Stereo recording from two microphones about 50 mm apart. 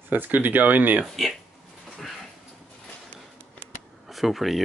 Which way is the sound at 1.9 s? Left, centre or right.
Centre.